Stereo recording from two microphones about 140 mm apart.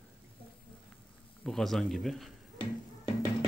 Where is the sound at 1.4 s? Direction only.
Centre (ahead or behind).